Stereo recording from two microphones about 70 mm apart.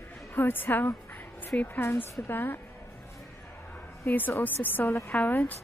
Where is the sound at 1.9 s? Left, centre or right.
Left.